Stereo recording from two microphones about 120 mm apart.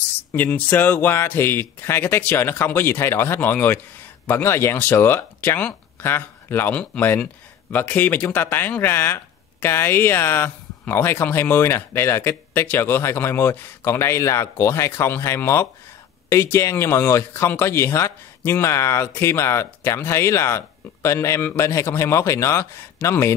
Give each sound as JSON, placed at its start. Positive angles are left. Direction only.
{"t": 0.3, "sound": "speech", "side_deg": 15}